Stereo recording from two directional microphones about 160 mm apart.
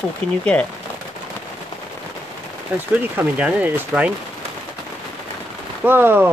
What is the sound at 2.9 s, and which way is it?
Speech, 10° right (ahead or behind).